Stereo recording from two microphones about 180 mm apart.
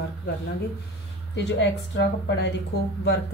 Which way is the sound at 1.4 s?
70° left (ahead or behind).